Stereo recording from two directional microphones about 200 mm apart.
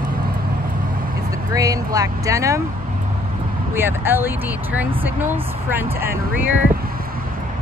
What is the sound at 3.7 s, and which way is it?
Speech, 10° right (ahead or behind).